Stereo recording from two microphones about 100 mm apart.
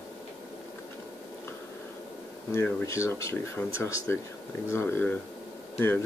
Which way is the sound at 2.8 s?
30° left (ahead or behind).